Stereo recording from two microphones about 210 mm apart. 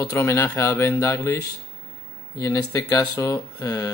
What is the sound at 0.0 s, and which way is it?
Speech, 15° left (ahead or behind).